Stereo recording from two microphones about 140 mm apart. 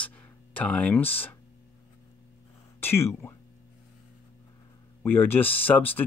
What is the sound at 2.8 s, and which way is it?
Speech, 15° left (ahead or behind).